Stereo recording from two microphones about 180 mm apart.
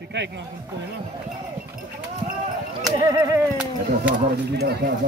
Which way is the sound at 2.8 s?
20° right (ahead or behind).